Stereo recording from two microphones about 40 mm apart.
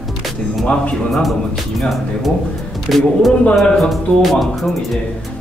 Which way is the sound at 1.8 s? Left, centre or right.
Centre.